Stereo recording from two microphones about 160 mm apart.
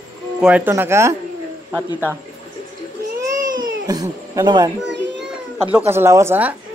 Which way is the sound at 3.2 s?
25° right (ahead or behind).